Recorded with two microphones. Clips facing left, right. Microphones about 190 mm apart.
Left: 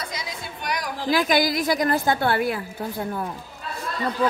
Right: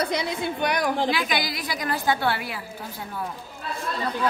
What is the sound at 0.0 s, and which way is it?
A woman's voice, 65° right (ahead or behind).